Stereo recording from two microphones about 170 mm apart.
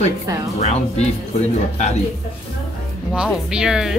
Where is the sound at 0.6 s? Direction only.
40° left (ahead or behind).